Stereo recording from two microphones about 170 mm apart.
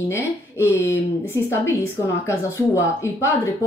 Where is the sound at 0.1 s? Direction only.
15° left (ahead or behind).